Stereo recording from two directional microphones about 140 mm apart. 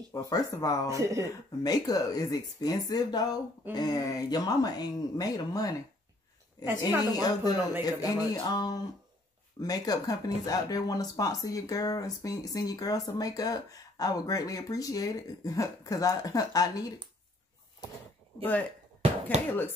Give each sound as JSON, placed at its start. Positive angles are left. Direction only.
{"t": 0.1, "sound": "speech", "side_deg": 25}
{"t": 0.8, "sound": "speech", "side_deg": -20}
{"t": 1.2, "sound": "speech", "side_deg": 25}
{"t": 7.1, "sound": "speech", "side_deg": 30}
{"t": 18.4, "sound": "speech", "side_deg": 10}
{"t": 19.3, "sound": "speech", "side_deg": -55}